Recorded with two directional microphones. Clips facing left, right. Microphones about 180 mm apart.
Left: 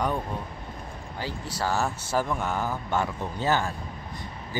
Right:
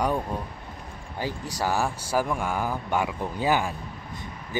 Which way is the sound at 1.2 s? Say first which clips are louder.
Right 2 dB; 15° right (ahead or behind).